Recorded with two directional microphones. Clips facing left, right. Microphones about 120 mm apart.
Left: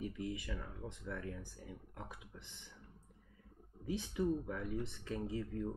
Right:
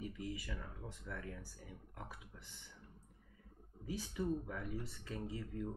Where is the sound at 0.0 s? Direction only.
25° left (ahead or behind).